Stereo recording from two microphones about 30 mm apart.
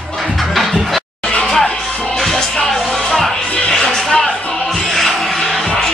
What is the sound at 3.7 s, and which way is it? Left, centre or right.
Music, centre.